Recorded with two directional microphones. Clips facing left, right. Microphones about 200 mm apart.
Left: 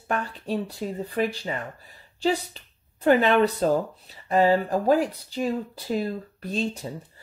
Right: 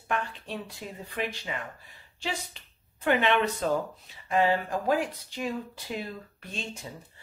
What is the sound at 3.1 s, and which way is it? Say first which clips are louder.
Speech: left 6 dB; 35° left (ahead or behind).